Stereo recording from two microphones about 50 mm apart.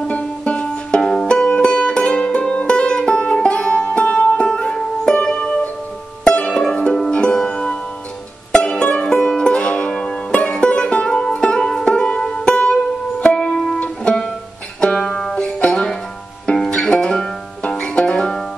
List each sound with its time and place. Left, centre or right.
0.1 s music: left
1.0 s music: centre
9.0 s music: centre
14.8 s music: left